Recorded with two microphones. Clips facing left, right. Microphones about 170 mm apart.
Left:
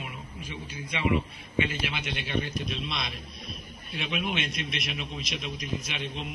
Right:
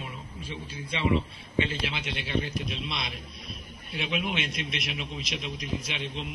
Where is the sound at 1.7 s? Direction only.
25° right (ahead or behind).